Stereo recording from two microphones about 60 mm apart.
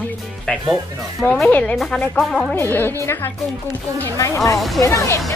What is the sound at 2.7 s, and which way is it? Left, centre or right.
Speech, left.